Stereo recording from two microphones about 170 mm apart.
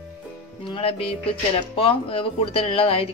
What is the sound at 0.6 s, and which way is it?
Speech, 30° left (ahead or behind).